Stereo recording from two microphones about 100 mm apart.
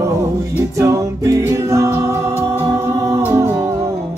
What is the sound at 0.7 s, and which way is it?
Music, 30° right (ahead or behind).